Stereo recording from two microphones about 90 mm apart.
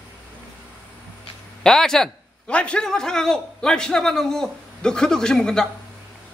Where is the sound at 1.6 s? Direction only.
5° left (ahead or behind).